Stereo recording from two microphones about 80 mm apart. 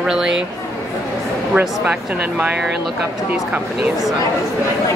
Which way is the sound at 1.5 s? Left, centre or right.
Right.